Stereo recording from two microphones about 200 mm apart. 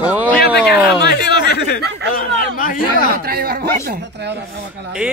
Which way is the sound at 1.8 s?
55° right (ahead or behind).